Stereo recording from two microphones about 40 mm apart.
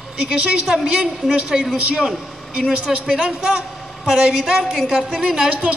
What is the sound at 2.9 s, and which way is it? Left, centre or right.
Speech, centre.